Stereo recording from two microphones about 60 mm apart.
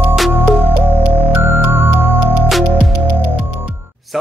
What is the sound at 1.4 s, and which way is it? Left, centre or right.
Music, right.